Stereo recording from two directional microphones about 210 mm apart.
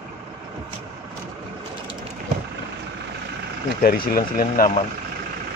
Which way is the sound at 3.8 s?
45° left (ahead or behind).